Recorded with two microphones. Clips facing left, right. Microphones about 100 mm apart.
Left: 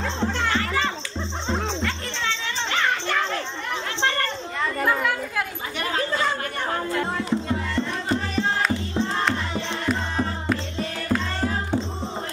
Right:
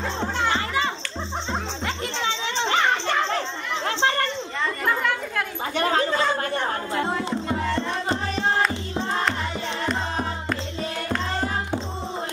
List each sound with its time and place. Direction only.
2.2 s children playing: 20° right (ahead or behind)
5.8 s a sound: 35° right (ahead or behind)
7.0 s music: 30° right (ahead or behind)
11.1 s music: 20° right (ahead or behind)